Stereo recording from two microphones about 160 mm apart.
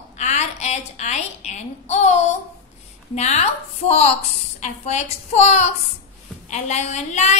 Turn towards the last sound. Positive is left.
turn(degrees=45)  # may be behind; listen again after turning